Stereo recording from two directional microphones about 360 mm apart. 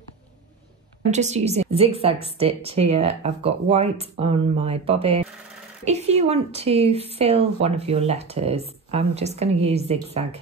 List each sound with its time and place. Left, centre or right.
1.1 s speech: centre